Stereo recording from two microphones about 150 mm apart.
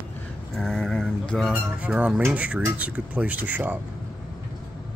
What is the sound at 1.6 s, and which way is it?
Speech, 10° right (ahead or behind).